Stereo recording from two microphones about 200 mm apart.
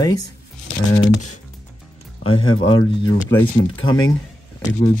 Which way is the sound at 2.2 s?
25° left (ahead or behind).